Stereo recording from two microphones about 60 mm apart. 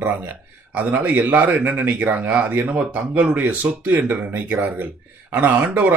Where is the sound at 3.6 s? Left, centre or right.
Right.